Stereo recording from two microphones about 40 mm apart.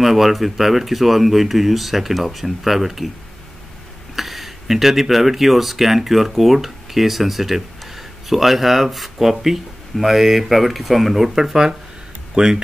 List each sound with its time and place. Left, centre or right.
0.0 s speech: centre
4.1 s speech: centre
12.4 s speech: right